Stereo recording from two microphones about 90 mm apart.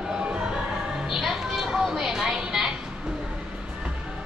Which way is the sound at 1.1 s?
Centre (ahead or behind).